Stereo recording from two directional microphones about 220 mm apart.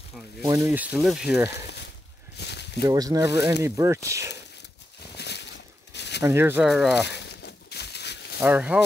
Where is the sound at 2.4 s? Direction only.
50° left (ahead or behind).